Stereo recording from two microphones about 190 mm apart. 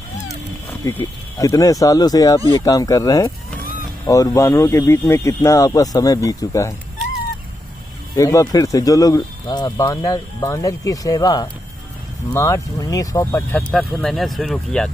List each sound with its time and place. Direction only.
0.7 s speech: 15° left (ahead or behind)
8.1 s speech: 20° left (ahead or behind); by 14.9 s centre (ahead or behind)